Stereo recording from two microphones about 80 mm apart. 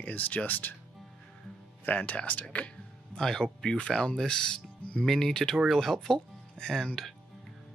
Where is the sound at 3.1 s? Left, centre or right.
Centre.